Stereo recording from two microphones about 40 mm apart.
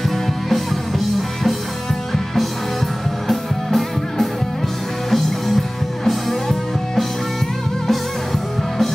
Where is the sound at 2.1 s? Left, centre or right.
Centre.